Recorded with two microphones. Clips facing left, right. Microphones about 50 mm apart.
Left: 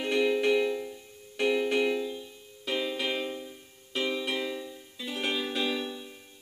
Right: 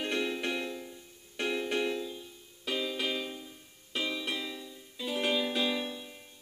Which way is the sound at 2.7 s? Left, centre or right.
Left.